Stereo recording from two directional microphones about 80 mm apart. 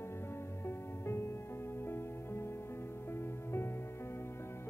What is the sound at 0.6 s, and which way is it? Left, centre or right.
Music, left.